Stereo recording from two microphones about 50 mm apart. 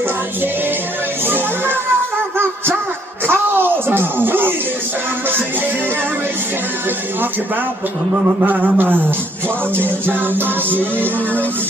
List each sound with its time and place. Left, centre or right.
3.3 s music: right
8.4 s music: right